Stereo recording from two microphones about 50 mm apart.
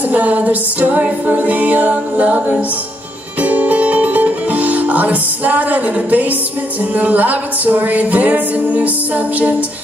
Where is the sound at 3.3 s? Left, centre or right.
Right.